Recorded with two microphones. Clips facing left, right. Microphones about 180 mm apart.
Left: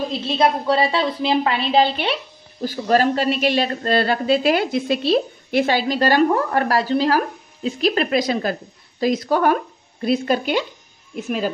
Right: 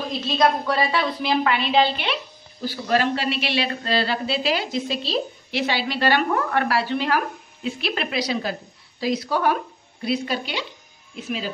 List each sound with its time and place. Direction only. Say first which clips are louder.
0.4 s a woman's voice: left 3 dB; 25° left (ahead or behind); by 11.5 s 50° left (ahead or behind)